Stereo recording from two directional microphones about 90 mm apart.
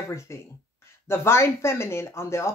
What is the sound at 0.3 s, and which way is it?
Speech, 30° left (ahead or behind).